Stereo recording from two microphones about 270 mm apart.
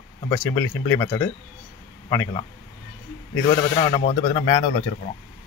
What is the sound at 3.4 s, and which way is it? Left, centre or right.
Speech, centre.